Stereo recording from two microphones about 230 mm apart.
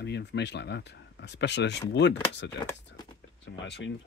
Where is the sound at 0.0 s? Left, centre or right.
Left.